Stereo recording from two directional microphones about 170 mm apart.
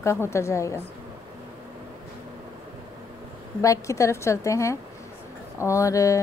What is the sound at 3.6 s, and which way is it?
A woman's voice, 20° left (ahead or behind).